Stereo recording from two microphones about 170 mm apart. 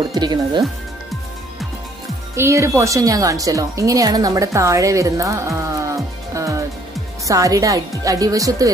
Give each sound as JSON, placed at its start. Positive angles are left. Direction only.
{"t": 0.0, "sound": "speech", "side_deg": -25}
{"t": 2.3, "sound": "speech", "side_deg": -15}